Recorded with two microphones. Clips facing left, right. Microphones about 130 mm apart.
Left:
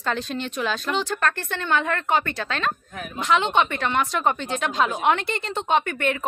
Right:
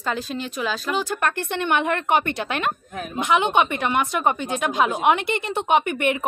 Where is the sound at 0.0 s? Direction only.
5° right (ahead or behind).